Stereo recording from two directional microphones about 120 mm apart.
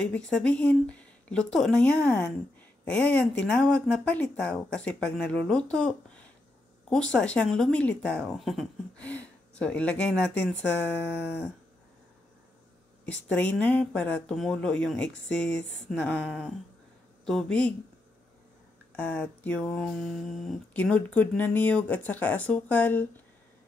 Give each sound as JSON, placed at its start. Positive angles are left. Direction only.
{"t": 0.0, "sound": "speech", "side_deg": 10}
{"t": 9.0, "sound": "speech", "side_deg": 10}
{"t": 13.0, "sound": "speech", "side_deg": 10}
{"t": 18.9, "sound": "speech", "side_deg": 10}
{"t": 20.7, "sound": "speech", "side_deg": 10}